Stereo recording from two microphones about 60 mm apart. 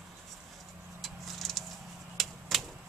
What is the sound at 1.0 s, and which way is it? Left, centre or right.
Vehicle, centre.